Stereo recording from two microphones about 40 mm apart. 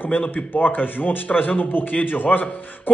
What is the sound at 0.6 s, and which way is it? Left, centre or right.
Speech, left.